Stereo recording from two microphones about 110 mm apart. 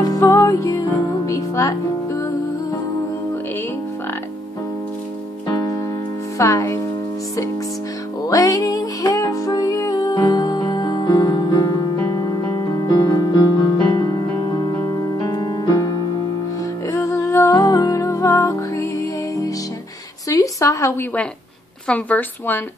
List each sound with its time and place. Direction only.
0.0 s music: 35° left (ahead or behind)
6.3 s music: 25° left (ahead or behind)
8.3 s music: 30° left (ahead or behind)
15.1 s music: 35° left (ahead or behind)
16.9 s music: 30° left (ahead or behind)
20.2 s a sound: 30° left (ahead or behind)
21.8 s a woman's voice: 15° left (ahead or behind)